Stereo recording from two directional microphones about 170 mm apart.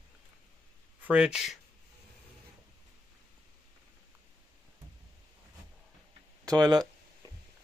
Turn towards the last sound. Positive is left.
turn(degrees=-25)  # may be behind; listen again after turning